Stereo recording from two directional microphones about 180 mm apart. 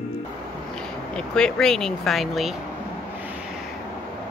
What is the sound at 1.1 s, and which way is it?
Speech, 5° left (ahead or behind).